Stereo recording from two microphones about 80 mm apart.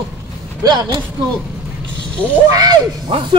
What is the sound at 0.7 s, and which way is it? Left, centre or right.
Speech, right.